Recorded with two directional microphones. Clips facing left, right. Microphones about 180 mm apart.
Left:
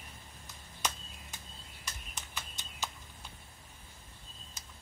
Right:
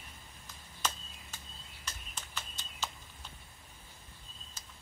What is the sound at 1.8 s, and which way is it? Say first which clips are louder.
Clip-clop: even; 15° left (ahead or behind).